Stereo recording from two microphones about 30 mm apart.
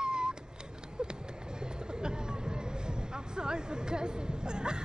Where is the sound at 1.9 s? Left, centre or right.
Right.